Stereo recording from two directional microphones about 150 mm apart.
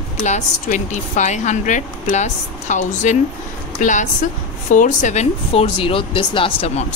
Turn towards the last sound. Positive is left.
turn(degrees=35)  # may be behind; listen again after turning